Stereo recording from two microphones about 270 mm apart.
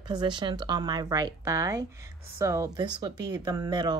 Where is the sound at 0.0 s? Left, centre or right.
Centre.